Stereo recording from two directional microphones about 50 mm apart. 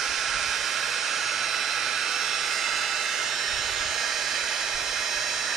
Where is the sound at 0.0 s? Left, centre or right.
Centre.